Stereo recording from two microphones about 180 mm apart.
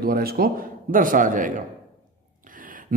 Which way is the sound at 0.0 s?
55° right (ahead or behind).